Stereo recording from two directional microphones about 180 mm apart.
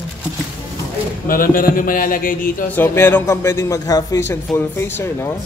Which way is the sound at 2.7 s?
10° left (ahead or behind).